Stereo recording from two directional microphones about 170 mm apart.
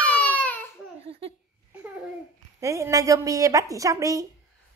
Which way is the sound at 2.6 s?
20° right (ahead or behind).